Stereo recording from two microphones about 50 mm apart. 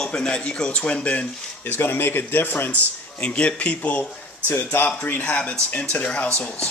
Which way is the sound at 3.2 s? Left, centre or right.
Left.